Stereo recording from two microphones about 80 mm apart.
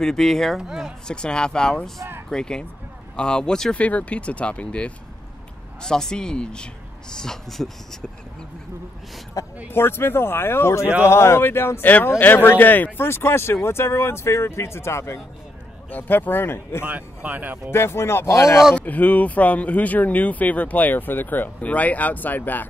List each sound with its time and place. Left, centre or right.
0.0 s speech: centre
0.6 s speech: centre
1.0 s speech: centre
9.4 s speech: left
9.7 s speech: left
15.9 s speech: left
16.8 s speech: centre
17.6 s speech: left
18.8 s speech: left